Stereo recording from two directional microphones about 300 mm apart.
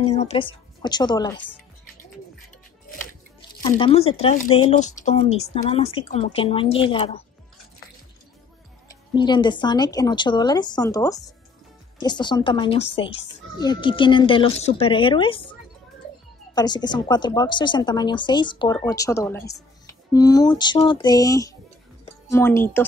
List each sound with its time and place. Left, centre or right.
0.0 s a woman's voice: left
3.7 s a woman's voice: centre
9.1 s speech: centre
16.5 s speech: centre